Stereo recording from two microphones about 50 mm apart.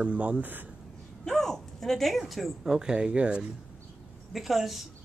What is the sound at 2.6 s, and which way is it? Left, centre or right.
Speech, centre.